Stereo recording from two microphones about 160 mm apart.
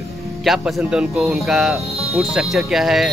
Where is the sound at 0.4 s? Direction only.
Centre (ahead or behind).